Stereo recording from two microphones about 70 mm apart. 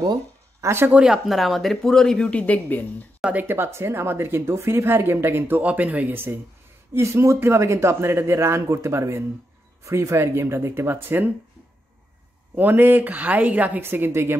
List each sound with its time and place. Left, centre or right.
0.6 s speech: right
0.9 s speech: centre; by 3.1 s left
3.4 s speech: right
5.6 s speech: right
6.9 s speech: right
12.5 s speech: right